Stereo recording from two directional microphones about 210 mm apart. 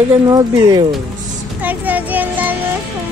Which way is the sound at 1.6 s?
10° right (ahead or behind).